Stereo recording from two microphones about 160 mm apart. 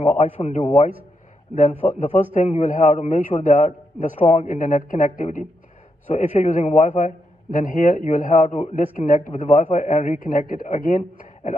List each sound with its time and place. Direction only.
0.2 s a man's voice: 45° left (ahead or behind)
4.5 s a man's voice: 55° left (ahead or behind)
9.4 s a man's voice: 45° left (ahead or behind)